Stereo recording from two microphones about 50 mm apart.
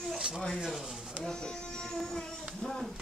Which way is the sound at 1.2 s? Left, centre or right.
Centre.